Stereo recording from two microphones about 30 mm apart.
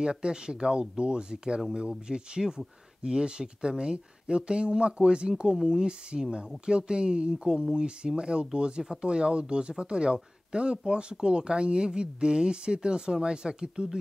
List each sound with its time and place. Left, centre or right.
0.0 s speech: right